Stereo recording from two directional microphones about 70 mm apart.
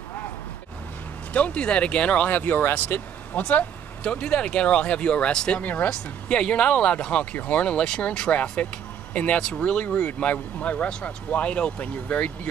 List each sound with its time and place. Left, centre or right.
1.3 s speech: centre